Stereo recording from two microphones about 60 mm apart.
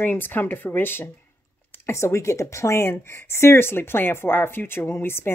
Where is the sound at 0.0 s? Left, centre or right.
Left.